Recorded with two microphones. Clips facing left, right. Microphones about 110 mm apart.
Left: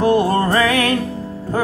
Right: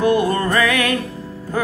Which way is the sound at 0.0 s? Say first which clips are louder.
Left 2 dB; 30° left (ahead or behind).